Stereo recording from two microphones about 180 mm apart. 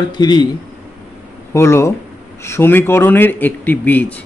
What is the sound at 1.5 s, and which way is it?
A man's voice, 15° left (ahead or behind).